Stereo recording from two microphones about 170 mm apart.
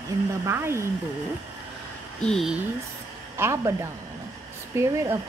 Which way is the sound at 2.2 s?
Centre (ahead or behind).